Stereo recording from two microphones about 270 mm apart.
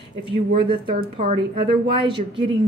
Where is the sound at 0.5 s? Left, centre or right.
Right.